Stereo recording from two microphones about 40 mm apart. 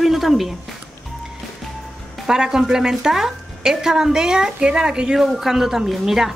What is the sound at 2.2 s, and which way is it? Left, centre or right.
Speech, centre.